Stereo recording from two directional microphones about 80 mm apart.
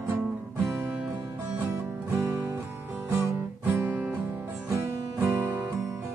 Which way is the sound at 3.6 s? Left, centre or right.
Right.